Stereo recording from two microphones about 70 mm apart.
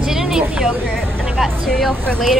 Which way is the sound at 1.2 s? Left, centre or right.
Centre.